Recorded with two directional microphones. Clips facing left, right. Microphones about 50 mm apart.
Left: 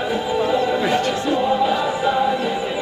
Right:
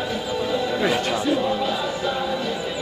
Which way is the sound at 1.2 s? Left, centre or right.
Centre.